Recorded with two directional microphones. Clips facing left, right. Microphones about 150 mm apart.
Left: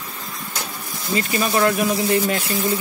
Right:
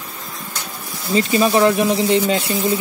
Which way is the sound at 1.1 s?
25° right (ahead or behind).